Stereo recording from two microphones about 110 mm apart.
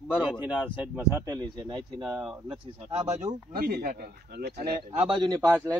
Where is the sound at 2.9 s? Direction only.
80° right.